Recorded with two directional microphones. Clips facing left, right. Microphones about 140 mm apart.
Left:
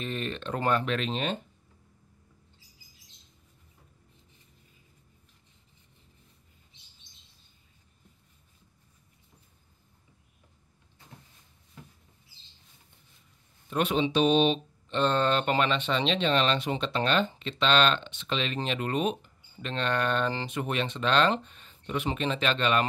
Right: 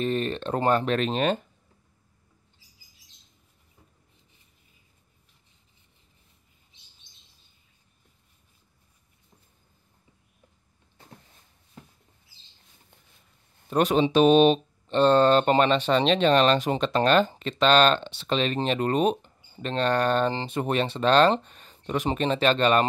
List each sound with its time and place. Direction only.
0.0 s speech: 40° right (ahead or behind)
13.7 s speech: 40° right (ahead or behind)